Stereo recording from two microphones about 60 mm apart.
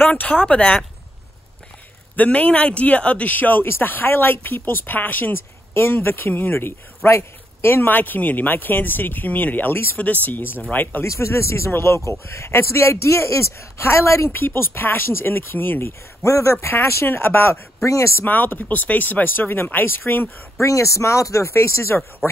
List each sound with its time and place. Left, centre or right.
0.2 s speech: centre
2.1 s speech: left
7.1 s speech: left
11.1 s speech: left
14.3 s speech: left
16.3 s speech: left
16.6 s speech: left
17.8 s speech: left
18.2 s speech: left
20.6 s speech: left